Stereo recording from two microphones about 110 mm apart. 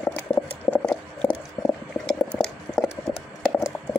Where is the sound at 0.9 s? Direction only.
10° left (ahead or behind).